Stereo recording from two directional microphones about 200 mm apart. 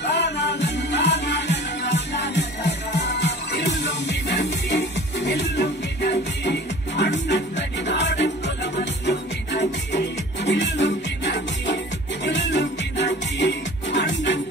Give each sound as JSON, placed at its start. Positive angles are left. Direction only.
{"t": 0.1, "sound": "music", "side_deg": 60}
{"t": 7.0, "sound": "music", "side_deg": 60}
{"t": 10.5, "sound": "music", "side_deg": 60}